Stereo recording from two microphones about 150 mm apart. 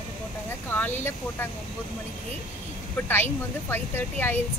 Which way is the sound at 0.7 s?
15° left (ahead or behind).